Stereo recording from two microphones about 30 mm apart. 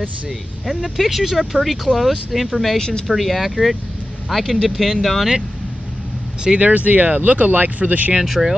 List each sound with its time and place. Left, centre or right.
0.9 s speech: centre
1.2 s speech: centre
1.5 s speech: centre
6.6 s speech: right
7.8 s speech: right
8.2 s speech: centre